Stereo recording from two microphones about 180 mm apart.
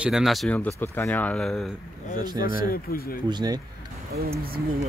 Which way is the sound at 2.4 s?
55° left (ahead or behind).